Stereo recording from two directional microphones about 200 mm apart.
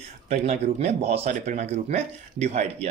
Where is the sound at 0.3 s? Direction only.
35° right (ahead or behind).